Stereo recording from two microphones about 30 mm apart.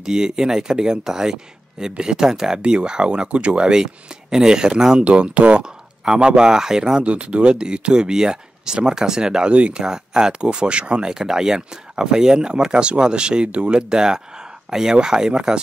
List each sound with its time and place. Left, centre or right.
0.0 s speech: right
2.6 s speech: right
5.0 s speech: right
5.6 s speech: right
7.0 s speech: right
9.5 s speech: right
9.8 s speech: right